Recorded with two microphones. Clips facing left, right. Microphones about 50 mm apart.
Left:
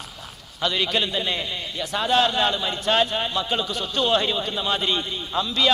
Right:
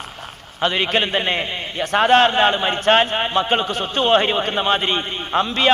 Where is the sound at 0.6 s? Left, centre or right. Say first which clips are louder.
Right 5 dB; right.